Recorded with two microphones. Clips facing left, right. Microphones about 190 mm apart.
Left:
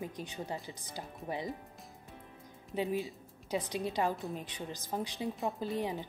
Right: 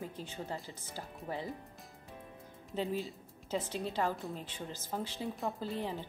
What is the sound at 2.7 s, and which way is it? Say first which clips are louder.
A woman's voice: left 2 dB; 15° left (ahead or behind).